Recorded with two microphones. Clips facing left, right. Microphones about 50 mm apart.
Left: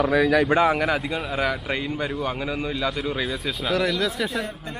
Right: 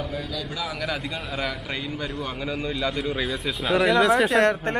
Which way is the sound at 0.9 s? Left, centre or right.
Centre.